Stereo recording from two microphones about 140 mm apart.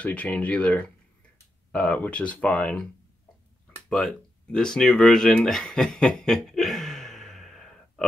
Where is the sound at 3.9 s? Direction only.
5° left (ahead or behind).